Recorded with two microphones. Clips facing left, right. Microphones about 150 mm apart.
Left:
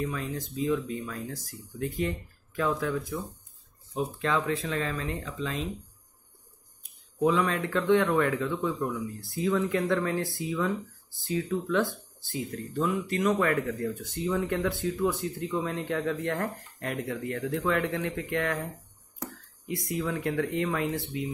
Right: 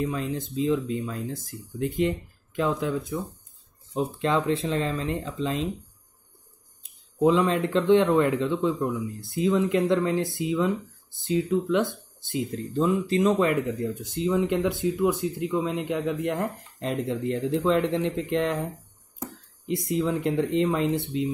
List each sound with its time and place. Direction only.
0.0 s speech: 30° right (ahead or behind)
7.2 s speech: 25° right (ahead or behind)
19.7 s speech: 20° right (ahead or behind)